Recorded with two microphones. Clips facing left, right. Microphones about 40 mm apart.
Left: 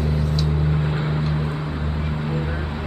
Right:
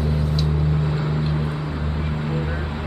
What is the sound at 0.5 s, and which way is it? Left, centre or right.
Vehicle, centre.